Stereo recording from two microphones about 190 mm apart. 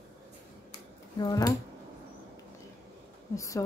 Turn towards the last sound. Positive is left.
turn(degrees=15)  # may be behind; listen again after turning